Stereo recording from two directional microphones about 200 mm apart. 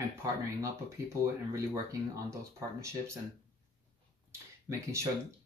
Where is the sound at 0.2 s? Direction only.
15° right (ahead or behind).